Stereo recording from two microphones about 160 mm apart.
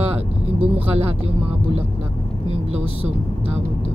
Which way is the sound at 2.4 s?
40° right (ahead or behind).